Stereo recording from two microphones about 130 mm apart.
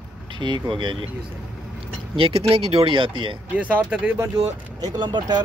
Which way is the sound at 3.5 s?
10° right (ahead or behind).